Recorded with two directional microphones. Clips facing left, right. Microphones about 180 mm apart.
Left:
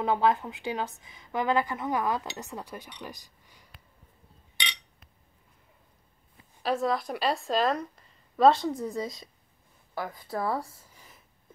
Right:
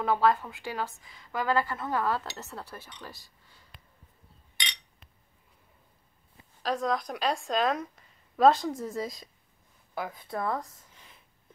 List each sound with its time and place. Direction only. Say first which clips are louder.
0.0 s speech: even; 20° left (ahead or behind)
6.6 s a woman's voice: left 2 dB; 5° left (ahead or behind)